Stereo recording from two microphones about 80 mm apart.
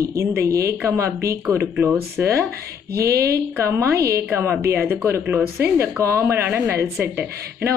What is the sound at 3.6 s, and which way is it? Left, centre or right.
Speech, right.